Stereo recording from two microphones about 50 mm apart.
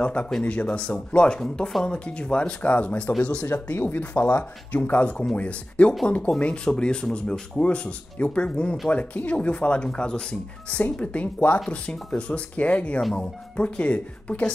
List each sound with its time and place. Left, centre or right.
0.0 s speech: left
3.5 s speech: left; by 10.2 s centre
10.7 s speech: left